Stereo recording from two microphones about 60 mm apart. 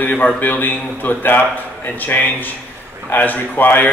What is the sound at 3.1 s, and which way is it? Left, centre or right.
Speech, left.